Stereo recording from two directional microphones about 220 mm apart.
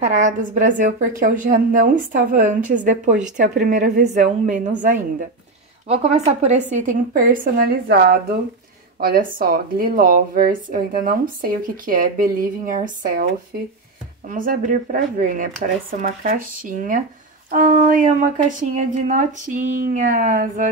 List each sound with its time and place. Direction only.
0.0 s speech: 35° right (ahead or behind)
5.9 s a woman's voice: 30° right (ahead or behind)